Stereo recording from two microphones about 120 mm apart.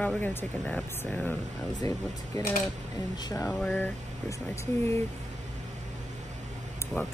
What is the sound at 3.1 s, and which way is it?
Speech, 35° left (ahead or behind).